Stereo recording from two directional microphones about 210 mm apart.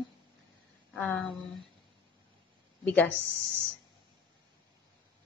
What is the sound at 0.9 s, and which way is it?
Speech, 5° left (ahead or behind).